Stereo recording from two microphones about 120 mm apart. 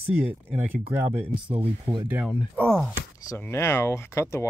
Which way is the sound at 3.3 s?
20° left (ahead or behind).